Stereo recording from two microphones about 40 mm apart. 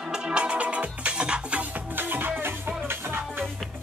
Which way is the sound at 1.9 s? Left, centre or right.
Right.